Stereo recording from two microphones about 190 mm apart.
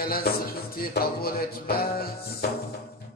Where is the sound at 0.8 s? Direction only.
50° left (ahead or behind).